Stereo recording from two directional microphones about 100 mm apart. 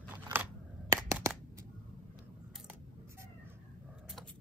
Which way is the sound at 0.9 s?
30° right (ahead or behind).